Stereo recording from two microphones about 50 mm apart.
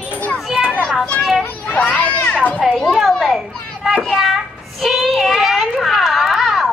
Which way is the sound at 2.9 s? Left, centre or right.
Centre.